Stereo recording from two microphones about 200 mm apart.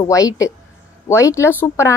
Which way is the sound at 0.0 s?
20° left (ahead or behind).